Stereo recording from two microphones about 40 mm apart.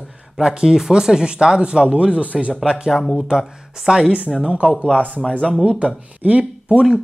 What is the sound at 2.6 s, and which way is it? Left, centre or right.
Speech, centre.